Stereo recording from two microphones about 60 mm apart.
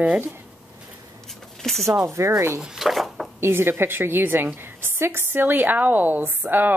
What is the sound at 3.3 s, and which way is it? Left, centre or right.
A woman's voice, right.